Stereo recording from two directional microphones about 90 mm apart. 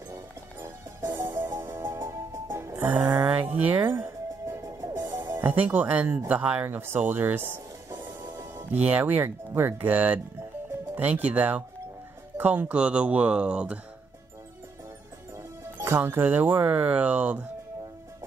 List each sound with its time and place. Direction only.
1.1 s music: 30° right (ahead or behind)
3.1 s speech: 20° right (ahead or behind)
3.9 s music: 30° right (ahead or behind)
5.1 s music: 50° right (ahead or behind)
5.4 s speech: 20° right (ahead or behind)
15.3 s music: 30° right (ahead or behind)
16.2 s speech: 20° right (ahead or behind)